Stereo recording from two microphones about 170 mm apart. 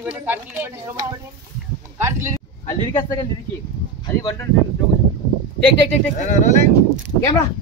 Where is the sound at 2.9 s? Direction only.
25° left (ahead or behind).